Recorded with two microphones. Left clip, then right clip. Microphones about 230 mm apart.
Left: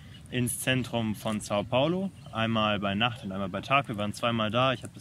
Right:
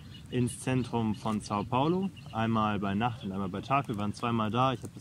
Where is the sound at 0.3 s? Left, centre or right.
Right.